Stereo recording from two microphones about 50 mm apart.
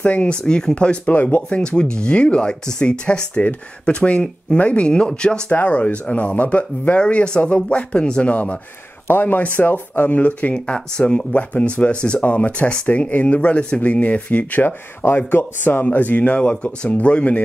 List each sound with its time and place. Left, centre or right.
0.0 s speech: left
1.1 s speech: left
1.5 s speech: centre
5.5 s speech: left
9.0 s speech: left
10.5 s speech: centre